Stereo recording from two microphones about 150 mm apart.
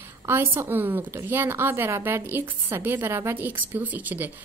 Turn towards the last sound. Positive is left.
turn(degrees=-10)  # may be behind; listen again after turning